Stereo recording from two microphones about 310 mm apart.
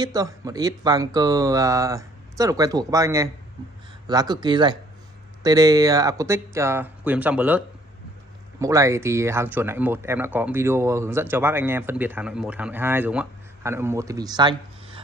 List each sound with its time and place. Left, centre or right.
0.0 s speech: centre